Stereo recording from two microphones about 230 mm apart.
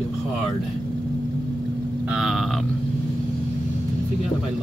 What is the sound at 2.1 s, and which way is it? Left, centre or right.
Speech, centre.